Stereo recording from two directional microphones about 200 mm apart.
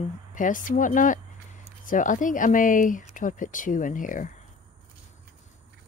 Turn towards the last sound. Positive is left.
turn(degrees=40)  # may be behind; listen again after turning